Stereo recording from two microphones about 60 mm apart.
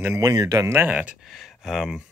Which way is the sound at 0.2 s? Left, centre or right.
Right.